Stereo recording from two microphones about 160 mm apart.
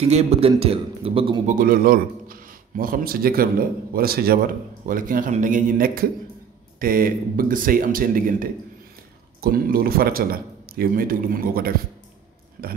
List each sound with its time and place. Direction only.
0.0 s a man's voice: 40° right (ahead or behind)
1.5 s a man's voice: 60° right (ahead or behind)